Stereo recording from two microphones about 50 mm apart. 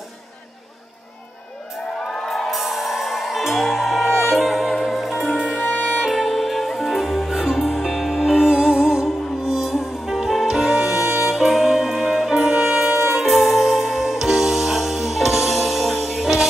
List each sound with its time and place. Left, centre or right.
2.0 s music: centre
5.6 s music: left
5.9 s music: centre
13.1 s music: centre